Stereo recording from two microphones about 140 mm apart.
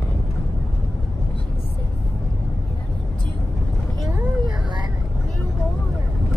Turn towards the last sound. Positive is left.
turn(degrees=-30)  # may be behind; listen again after turning